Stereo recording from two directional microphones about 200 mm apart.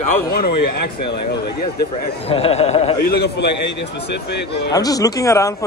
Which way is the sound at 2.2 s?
30° left (ahead or behind).